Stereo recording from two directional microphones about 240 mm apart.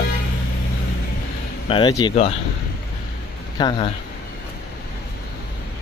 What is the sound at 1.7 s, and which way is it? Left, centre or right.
Speech, centre.